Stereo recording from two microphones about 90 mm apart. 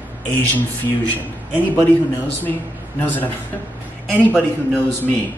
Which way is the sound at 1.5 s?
20° left (ahead or behind).